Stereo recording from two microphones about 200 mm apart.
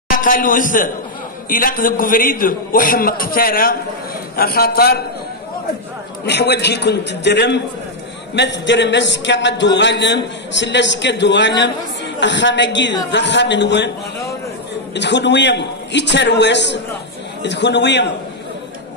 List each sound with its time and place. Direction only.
0.2 s a man's voice: 45° left (ahead or behind)
6.2 s a man's voice: 55° left (ahead or behind)
15.0 s a man's voice: 60° left (ahead or behind)